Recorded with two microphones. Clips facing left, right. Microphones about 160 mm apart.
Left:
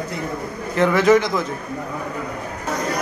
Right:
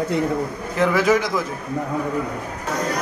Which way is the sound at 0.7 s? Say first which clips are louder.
Left 3 dB; 5° right (ahead or behind).